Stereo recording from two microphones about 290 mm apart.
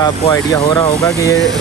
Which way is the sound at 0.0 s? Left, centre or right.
Centre.